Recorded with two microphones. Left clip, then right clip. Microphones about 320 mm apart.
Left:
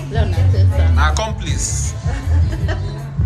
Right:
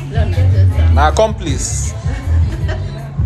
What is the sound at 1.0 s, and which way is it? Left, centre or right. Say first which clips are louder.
Speech: right 9 dB; centre.